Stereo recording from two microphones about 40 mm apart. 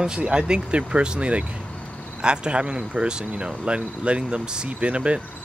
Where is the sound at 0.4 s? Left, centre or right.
Right.